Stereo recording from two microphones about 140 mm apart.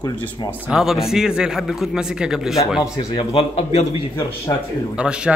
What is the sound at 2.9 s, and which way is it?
Speech, 45° left (ahead or behind).